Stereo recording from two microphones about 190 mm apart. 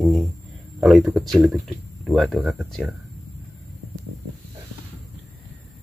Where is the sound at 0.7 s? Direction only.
Centre (ahead or behind).